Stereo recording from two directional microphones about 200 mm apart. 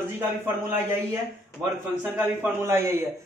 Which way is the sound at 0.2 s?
10° right (ahead or behind).